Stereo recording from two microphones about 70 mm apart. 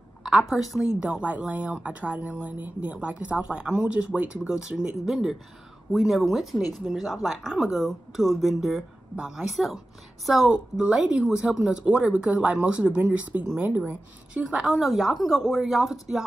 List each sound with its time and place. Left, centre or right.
0.2 s a woman's voice: centre
0.8 s speech: centre
10.5 s speech: centre
14.4 s speech: centre